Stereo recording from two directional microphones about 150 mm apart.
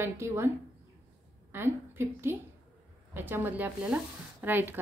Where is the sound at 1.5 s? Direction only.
15° right (ahead or behind).